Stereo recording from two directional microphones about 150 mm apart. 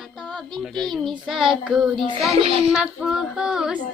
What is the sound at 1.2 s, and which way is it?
Speech, 5° right (ahead or behind).